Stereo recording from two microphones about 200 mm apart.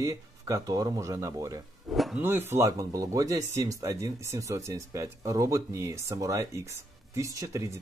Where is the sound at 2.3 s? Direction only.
10° right (ahead or behind).